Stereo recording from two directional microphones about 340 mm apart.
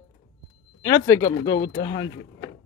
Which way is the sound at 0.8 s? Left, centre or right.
Centre.